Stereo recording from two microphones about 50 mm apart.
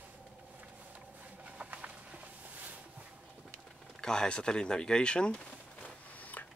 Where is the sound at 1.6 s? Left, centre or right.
Right.